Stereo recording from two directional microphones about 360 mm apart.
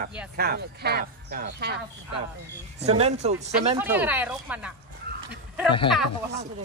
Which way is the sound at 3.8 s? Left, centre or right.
Centre.